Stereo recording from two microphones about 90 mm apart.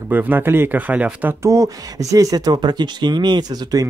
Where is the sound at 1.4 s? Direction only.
40° right (ahead or behind).